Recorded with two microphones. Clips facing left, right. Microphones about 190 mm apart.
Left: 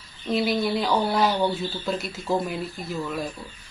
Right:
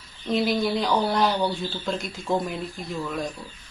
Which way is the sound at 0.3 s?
Centre (ahead or behind).